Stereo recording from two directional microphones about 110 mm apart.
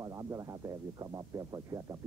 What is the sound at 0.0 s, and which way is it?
Speech, 30° right (ahead or behind).